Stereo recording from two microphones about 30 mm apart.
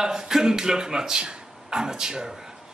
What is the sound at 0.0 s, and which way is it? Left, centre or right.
Speech, centre.